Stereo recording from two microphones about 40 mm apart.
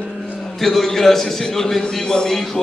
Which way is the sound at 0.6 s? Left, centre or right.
Centre.